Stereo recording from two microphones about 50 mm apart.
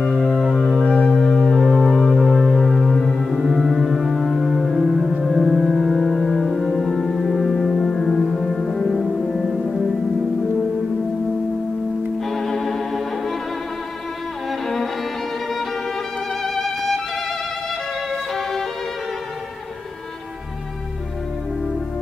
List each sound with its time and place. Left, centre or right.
0.2 s music: centre
0.8 s music: left
1.2 s music: centre
4.7 s music: centre
12.2 s music: centre
14.5 s music: centre
16.4 s music: centre
18.1 s violin: centre